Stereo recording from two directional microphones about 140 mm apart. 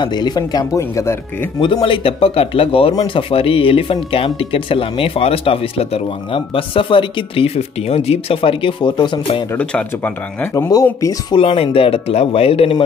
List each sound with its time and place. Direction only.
0.0 s speech: 30° left (ahead or behind)
1.6 s speech: 35° left (ahead or behind)
9.6 s speech: 10° left (ahead or behind)
10.5 s speech: 25° left (ahead or behind)
11.3 s speech: 45° left (ahead or behind)